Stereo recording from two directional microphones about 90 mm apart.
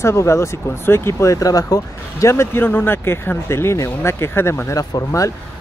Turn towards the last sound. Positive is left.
turn(degrees=40)  # may be behind; listen again after turning